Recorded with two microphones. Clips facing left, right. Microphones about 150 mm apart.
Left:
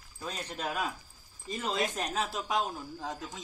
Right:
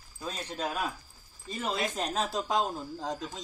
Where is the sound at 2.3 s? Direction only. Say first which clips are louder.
Right 3 dB; 30° right (ahead or behind).